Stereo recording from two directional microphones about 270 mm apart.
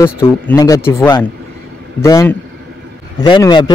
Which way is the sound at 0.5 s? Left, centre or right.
Centre.